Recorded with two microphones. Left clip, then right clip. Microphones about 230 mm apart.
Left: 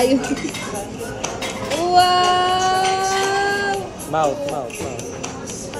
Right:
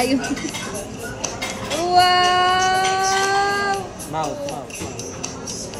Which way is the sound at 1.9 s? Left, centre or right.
Centre.